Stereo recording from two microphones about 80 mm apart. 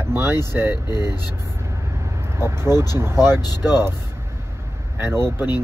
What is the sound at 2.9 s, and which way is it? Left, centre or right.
Speech, right.